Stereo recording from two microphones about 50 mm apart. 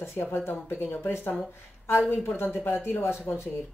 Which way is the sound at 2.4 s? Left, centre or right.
Left.